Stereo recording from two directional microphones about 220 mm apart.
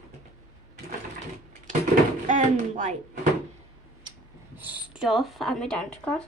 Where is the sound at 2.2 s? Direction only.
35° right (ahead or behind).